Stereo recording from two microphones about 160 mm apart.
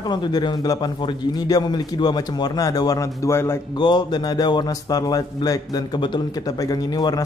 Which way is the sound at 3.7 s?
30° left (ahead or behind).